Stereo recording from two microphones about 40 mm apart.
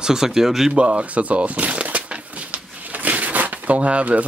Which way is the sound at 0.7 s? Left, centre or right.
Right.